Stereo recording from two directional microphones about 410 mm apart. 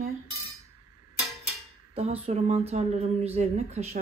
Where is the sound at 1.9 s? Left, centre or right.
Centre.